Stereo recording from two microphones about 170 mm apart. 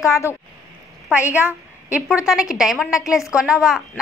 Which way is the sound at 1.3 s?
10° right (ahead or behind).